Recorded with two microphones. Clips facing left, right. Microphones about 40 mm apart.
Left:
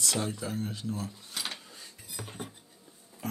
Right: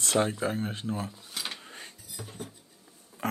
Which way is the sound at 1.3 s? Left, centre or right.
Centre.